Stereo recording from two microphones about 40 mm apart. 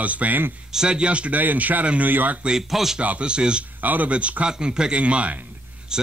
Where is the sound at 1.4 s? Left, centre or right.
Right.